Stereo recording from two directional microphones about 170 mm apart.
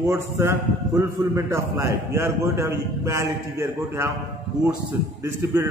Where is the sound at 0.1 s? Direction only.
15° right (ahead or behind).